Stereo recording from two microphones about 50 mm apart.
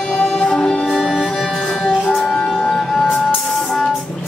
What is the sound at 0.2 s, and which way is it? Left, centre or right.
Music, centre.